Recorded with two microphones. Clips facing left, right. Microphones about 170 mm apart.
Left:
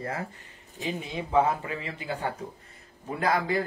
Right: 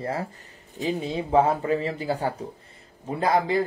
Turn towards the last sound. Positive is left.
turn(degrees=-25)  # may be behind; listen again after turning